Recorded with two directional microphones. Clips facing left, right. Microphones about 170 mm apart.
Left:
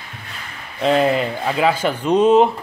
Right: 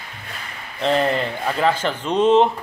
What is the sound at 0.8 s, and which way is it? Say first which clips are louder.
A man's voice: left 3 dB; 5° left (ahead or behind).